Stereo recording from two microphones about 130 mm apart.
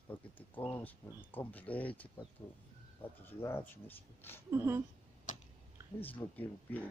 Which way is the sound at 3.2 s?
15° left (ahead or behind).